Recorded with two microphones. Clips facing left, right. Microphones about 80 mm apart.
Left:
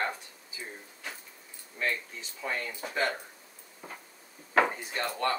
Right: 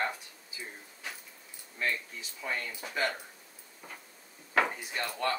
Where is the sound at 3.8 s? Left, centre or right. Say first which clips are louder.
Left 3 dB; centre.